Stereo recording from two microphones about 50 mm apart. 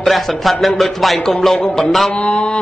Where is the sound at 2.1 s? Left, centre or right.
Left.